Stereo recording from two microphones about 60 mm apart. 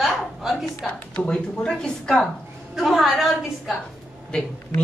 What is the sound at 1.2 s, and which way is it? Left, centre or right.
A man's voice, left.